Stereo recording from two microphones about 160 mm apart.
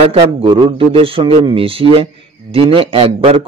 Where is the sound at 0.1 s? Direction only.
35° right (ahead or behind).